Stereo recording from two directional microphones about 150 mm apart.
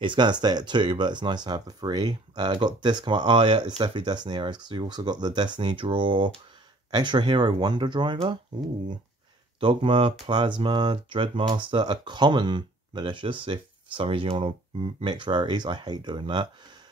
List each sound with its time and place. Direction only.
0.0 s speech: 30° right (ahead or behind)
9.6 s speech: 35° right (ahead or behind)